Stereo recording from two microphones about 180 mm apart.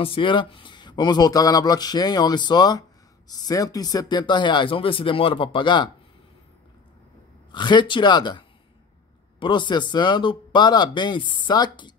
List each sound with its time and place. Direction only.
0.0 s speech: 30° left (ahead or behind)
7.5 s speech: 25° left (ahead or behind)